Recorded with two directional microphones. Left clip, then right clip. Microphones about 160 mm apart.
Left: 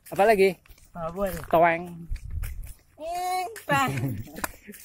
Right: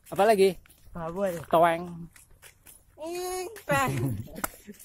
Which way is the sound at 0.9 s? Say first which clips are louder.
Left 1 dB; 20° right (ahead or behind).